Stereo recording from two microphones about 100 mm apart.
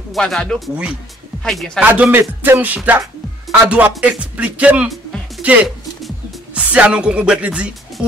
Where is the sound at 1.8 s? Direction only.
15° right (ahead or behind).